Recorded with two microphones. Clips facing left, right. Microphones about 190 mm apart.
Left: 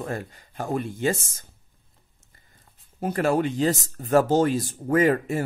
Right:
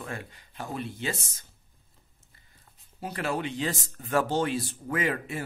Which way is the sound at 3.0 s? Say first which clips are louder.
Left 8 dB; 45° left (ahead or behind).